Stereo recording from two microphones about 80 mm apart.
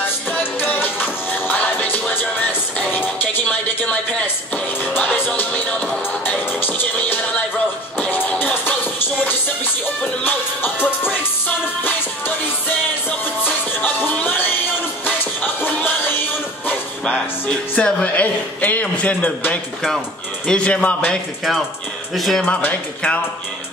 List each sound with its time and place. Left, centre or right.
0.0 s music: left
4.9 s music: left
8.0 s music: centre
10.2 s music: left
15.0 s music: left
17.0 s speech: centre
22.1 s speech: centre
22.4 s speech: centre